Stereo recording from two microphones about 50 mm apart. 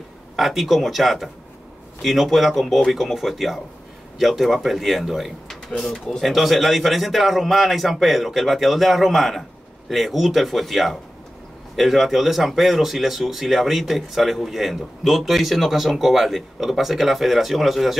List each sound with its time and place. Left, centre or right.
0.4 s speech: centre
5.7 s speech: centre